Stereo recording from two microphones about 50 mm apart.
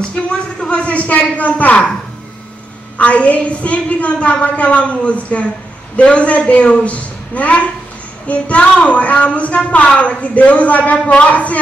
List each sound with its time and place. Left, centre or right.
0.1 s a man's voice: centre
3.0 s a woman's voice: left